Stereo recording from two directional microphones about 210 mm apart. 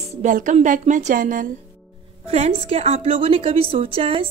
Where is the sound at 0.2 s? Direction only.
40° right (ahead or behind).